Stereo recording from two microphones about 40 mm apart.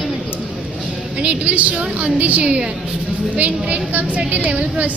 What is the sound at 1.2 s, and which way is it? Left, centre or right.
A woman's voice, right.